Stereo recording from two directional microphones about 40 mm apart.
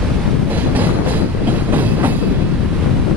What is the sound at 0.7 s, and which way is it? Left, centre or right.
Train, right.